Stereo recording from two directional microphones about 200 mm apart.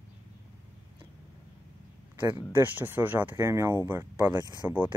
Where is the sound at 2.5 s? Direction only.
10° right (ahead or behind).